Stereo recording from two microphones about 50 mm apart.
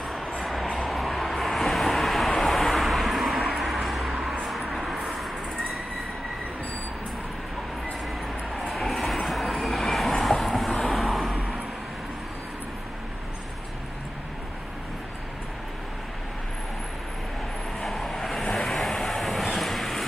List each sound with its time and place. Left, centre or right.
0.4 s vehicle: centre
8.5 s train: centre
10.8 s vehicle: centre
11.3 s vehicle: right
17.7 s vehicle: centre